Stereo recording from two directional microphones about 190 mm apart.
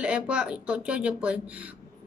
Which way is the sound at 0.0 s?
5° right (ahead or behind).